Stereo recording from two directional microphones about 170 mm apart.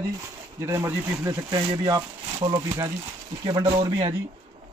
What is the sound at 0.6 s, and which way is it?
Speech, 15° right (ahead or behind).